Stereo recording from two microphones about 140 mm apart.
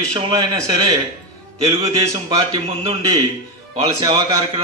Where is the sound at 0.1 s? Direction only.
35° right (ahead or behind).